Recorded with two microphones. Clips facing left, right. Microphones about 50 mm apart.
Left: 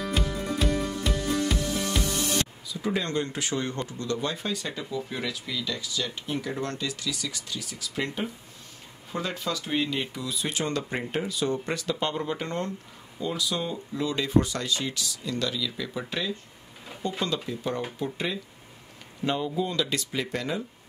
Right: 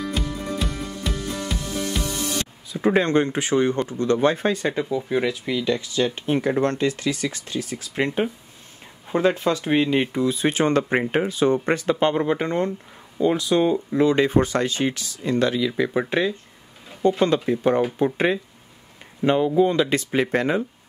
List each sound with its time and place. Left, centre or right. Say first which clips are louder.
0.0 s music: right 2 dB; centre
2.7 s speech: right 11 dB; right
4.0 s speech: right 11 dB; right
19.2 s speech: right 10 dB; right